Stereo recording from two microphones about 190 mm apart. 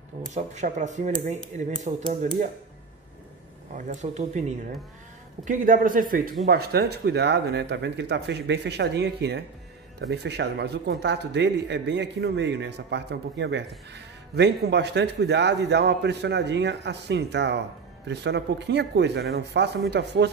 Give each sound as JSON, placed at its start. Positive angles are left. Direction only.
{"t": 0.3, "sound": "speech", "side_deg": -40}
{"t": 3.7, "sound": "a man's voice", "side_deg": -40}